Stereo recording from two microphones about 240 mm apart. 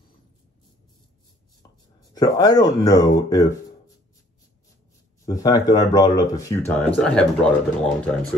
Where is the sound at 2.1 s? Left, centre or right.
Centre.